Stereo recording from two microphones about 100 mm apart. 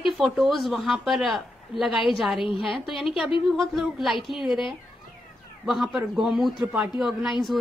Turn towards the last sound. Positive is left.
turn(degrees=0)  # may be behind; listen again after turning